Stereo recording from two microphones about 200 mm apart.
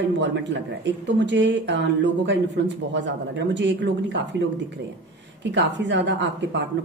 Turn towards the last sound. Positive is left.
turn(degrees=-65)  # may be behind; listen again after turning